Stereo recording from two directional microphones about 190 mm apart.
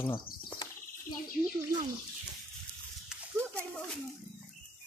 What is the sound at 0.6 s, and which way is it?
Bird, 20° left (ahead or behind).